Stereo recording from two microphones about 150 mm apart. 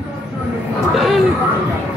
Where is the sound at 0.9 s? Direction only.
Centre (ahead or behind).